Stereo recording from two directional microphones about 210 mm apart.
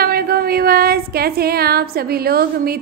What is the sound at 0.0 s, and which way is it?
Speech, 45° right (ahead or behind).